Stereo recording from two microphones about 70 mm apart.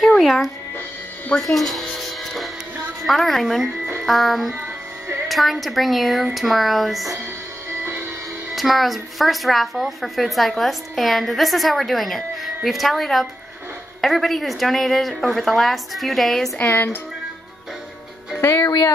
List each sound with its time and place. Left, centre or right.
0.2 s speech: centre
1.4 s music: centre
3.1 s a woman's voice: centre
8.5 s a woman's voice: centre
16.5 s speech: left
18.4 s speech: left